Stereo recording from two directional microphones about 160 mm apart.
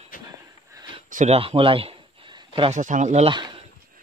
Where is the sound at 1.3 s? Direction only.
35° right (ahead or behind).